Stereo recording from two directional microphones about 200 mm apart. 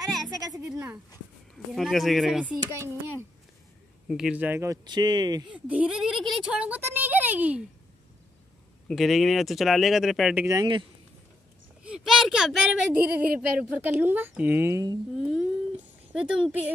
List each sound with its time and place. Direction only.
0.0 s a sound: centre (ahead or behind)
0.3 s a sound: 15° right (ahead or behind)
1.8 s speech: centre (ahead or behind)
2.6 s speech: 15° right (ahead or behind)
4.1 s speech: 5° right (ahead or behind); by 5.5 s 20° right (ahead or behind)
5.5 s speech: 5° right (ahead or behind)
8.8 s speech: centre (ahead or behind)
10.4 s speech: 20° right (ahead or behind)
11.8 s speech: 5° right (ahead or behind)
15.1 s speech: 5° right (ahead or behind)